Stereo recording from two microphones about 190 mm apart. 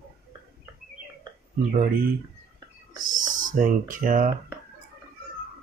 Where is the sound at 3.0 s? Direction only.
45° right (ahead or behind).